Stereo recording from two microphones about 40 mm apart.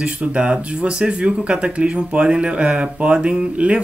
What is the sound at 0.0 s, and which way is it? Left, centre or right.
Speech, right.